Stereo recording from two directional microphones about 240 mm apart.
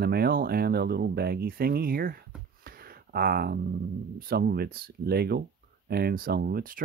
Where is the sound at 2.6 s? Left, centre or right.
Right.